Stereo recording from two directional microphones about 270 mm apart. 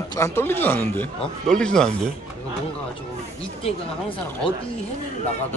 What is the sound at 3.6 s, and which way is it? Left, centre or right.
Speech, centre.